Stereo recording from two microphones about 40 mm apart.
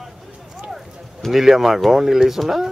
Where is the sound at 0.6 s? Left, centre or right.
Centre.